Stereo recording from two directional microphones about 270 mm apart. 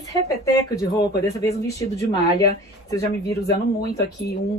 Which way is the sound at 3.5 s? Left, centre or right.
Left.